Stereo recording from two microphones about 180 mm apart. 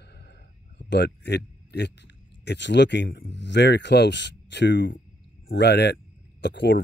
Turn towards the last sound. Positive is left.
turn(degrees=70)  # may be behind; listen again after turning